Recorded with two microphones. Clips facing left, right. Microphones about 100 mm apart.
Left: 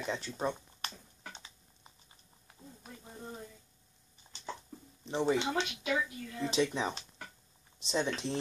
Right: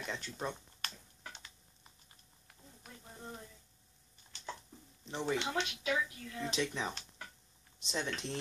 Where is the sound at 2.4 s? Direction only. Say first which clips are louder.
Left 5 dB; 20° left (ahead or behind).